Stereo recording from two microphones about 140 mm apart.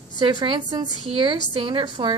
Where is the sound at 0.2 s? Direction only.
35° right (ahead or behind).